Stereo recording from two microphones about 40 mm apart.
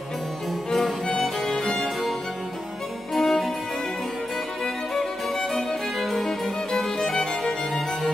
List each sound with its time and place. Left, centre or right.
0.7 s music: centre
3.2 s music: centre
5.4 s music: centre